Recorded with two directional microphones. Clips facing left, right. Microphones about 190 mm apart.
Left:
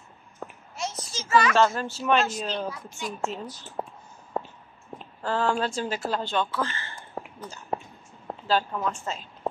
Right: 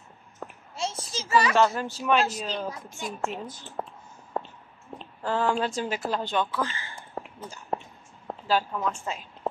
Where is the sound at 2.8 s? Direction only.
50° right (ahead or behind).